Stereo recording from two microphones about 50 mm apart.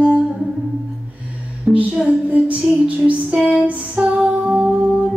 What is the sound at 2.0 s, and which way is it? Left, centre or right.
Music, right.